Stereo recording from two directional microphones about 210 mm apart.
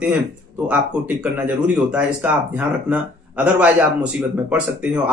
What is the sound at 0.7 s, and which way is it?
Speech, 5° right (ahead or behind).